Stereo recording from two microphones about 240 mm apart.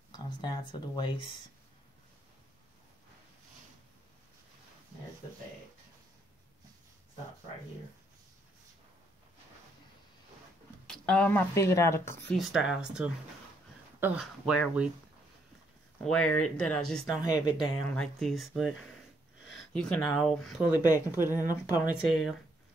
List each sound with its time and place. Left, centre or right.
0.1 s speech: centre
10.9 s speech: centre
12.4 s speech: centre
16.0 s speech: centre
17.2 s speech: centre
17.9 s speech: centre
21.3 s speech: centre
21.9 s speech: centre